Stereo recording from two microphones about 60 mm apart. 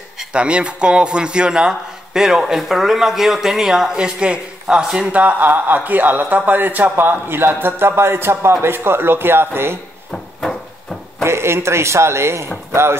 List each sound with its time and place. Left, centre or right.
0.3 s a man's voice: centre
5.1 s speech: right
10.1 s a sound: centre
11.2 s a man's voice: right